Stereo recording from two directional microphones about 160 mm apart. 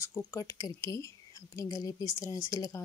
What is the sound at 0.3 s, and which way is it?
Speech, 20° left (ahead or behind).